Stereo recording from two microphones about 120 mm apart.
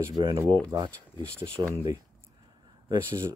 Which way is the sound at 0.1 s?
40° right (ahead or behind).